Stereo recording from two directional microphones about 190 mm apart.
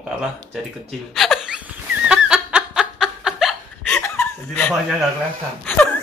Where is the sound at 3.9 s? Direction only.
10° left (ahead or behind).